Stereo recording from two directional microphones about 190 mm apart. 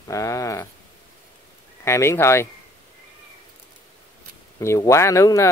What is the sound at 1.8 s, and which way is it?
Speech, 15° left (ahead or behind).